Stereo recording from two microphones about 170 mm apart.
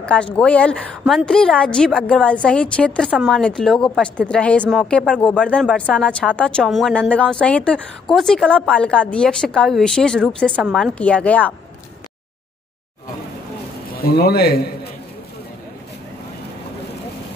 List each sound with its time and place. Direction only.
0.0 s speech: 5° left (ahead or behind)
13.9 s a man's voice: 65° left (ahead or behind)